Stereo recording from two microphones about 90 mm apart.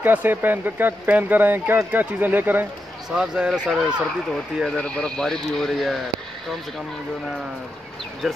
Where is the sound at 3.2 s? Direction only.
10° right (ahead or behind).